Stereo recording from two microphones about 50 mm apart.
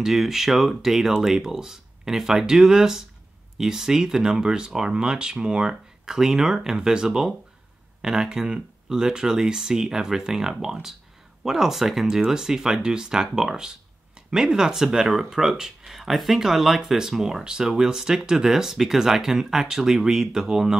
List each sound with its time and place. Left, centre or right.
0.0 s speech: centre